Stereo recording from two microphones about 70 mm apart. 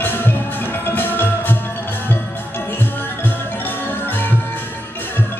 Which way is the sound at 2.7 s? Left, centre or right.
Left.